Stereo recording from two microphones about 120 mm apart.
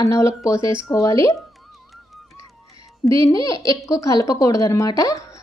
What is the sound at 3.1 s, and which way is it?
A woman's voice, 30° left (ahead or behind).